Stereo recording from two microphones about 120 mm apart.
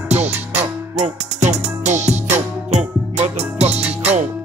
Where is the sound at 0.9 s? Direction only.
75° right (ahead or behind).